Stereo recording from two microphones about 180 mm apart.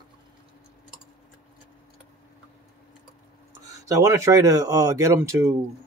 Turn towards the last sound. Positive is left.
turn(degrees=-15)  # may be behind; listen again after turning